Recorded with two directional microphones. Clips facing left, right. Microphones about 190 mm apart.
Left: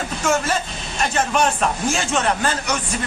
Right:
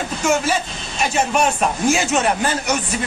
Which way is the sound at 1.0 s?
5° right (ahead or behind).